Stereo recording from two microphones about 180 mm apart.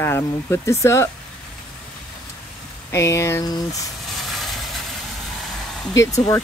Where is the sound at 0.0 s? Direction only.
15° left (ahead or behind).